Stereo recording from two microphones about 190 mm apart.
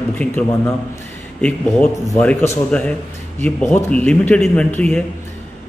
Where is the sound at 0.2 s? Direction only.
5° left (ahead or behind).